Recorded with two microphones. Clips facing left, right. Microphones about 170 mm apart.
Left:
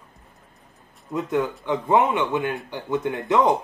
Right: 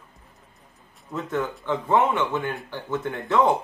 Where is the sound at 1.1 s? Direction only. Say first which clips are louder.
Left 4 dB; 15° left (ahead or behind).